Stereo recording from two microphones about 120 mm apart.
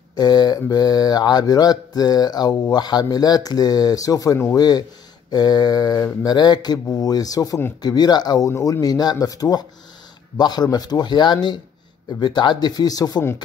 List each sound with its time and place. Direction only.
0.1 s mantra: 35° left (ahead or behind)
8.5 s mantra: 20° left (ahead or behind)